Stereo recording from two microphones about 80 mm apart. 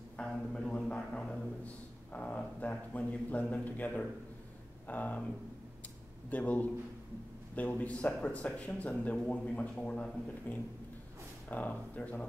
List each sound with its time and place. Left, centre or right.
0.2 s a man's voice: centre
6.3 s speech: centre